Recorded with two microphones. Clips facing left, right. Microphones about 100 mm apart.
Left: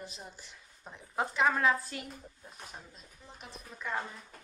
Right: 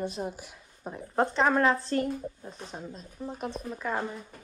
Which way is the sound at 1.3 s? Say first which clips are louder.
Right 2 dB; 35° right (ahead or behind).